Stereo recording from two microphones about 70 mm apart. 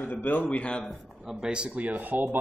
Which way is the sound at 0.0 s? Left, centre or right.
Left.